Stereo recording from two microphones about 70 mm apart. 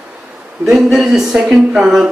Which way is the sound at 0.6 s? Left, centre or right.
Centre.